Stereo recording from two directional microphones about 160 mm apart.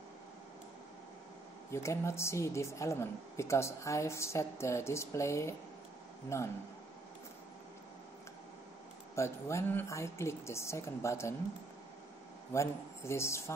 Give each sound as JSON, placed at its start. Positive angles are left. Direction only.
{"t": 1.7, "sound": "speech", "side_deg": 15}
{"t": 9.1, "sound": "speech", "side_deg": 15}
{"t": 12.5, "sound": "speech", "side_deg": 15}